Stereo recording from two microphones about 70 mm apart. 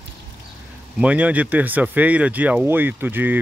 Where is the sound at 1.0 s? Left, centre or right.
Right.